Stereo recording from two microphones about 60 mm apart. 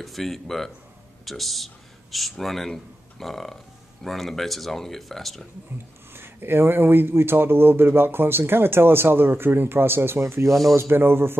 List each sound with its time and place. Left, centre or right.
0.0 s speech: centre
6.1 s speech: right
10.2 s speech: right
10.5 s speech: centre
10.8 s speech: right